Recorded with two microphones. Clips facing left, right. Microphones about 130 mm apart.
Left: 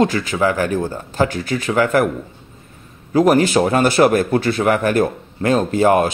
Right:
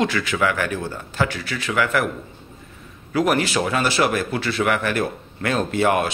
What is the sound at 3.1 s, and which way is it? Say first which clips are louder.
Speech: left 7 dB; 40° left (ahead or behind).